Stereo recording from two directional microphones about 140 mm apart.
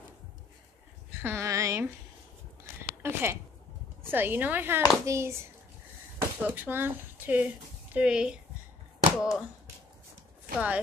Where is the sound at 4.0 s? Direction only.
15° right (ahead or behind).